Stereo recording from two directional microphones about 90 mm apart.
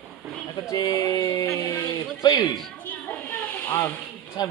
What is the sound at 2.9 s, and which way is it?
Snake, 20° left (ahead or behind).